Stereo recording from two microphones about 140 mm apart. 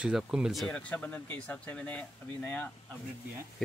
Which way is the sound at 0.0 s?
5° right (ahead or behind).